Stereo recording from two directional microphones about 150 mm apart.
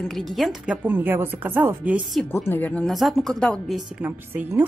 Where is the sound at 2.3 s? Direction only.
15° left (ahead or behind).